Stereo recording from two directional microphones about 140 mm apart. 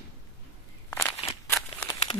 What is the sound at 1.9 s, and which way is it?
Crumpling, 30° left (ahead or behind).